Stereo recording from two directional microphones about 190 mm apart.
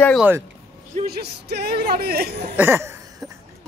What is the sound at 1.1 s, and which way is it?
Speech, 55° right (ahead or behind).